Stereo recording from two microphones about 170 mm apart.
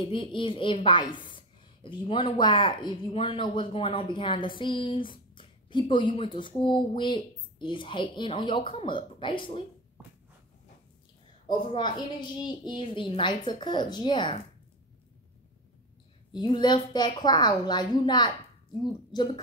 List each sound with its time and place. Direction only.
0.0 s a woman's voice: 30° left (ahead or behind)
11.4 s a woman's voice: 30° left (ahead or behind)
16.3 s a woman's voice: 25° left (ahead or behind)